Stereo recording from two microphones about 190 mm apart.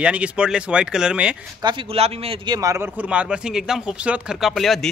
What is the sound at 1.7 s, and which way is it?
Speech, 30° right (ahead or behind).